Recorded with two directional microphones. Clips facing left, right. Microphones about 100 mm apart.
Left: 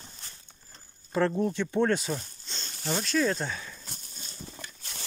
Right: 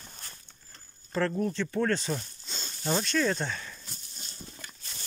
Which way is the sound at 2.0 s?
Centre (ahead or behind).